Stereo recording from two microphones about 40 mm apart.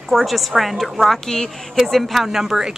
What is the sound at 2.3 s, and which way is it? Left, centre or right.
Speech, centre.